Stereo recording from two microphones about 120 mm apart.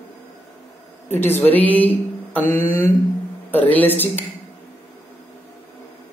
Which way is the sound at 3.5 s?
15° left (ahead or behind).